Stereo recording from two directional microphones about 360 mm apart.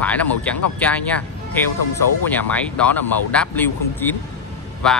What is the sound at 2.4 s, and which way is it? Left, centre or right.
Speech, centre.